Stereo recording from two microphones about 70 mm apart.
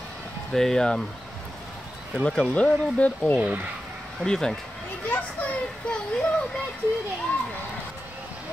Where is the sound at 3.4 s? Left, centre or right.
Right.